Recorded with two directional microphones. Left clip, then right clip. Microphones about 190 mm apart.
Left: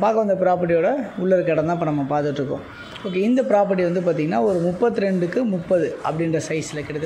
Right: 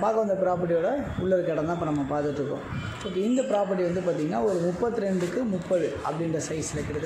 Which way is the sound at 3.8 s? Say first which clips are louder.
Left 6 dB; 35° left (ahead or behind).